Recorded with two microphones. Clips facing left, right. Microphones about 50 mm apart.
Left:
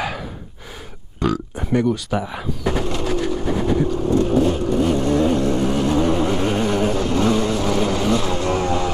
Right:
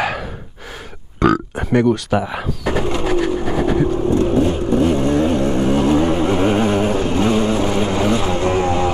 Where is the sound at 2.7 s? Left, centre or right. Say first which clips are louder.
Right 4 dB; right.